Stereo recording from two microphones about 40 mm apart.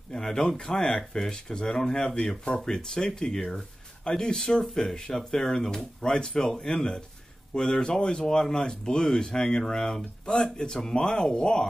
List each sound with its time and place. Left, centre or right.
0.1 s speech: centre